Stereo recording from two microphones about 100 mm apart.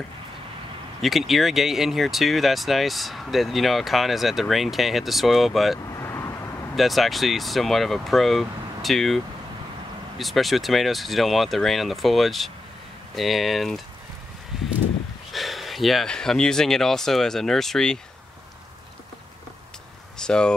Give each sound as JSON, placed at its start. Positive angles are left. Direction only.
{"t": 1.0, "sound": "speech", "side_deg": 0}
{"t": 5.9, "sound": "vehicle", "side_deg": 30}
{"t": 6.7, "sound": "speech", "side_deg": 0}
{"t": 15.3, "sound": "speech", "side_deg": 0}
{"t": 20.2, "sound": "speech", "side_deg": 10}